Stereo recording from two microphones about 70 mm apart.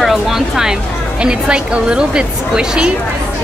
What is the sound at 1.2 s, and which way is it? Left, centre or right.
A woman's voice, centre.